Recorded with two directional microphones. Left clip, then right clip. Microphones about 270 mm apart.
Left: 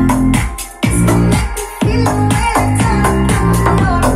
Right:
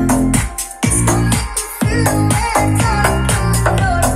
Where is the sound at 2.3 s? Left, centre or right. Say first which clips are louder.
Left 1 dB; right.